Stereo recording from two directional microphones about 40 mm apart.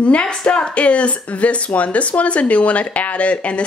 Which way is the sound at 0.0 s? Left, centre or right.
Left.